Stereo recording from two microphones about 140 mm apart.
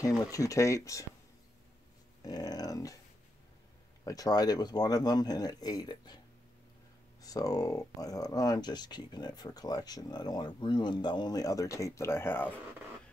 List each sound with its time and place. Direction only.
0.0 s speech: 25° left (ahead or behind)
2.2 s speech: 25° left (ahead or behind)
4.0 s speech: 25° left (ahead or behind)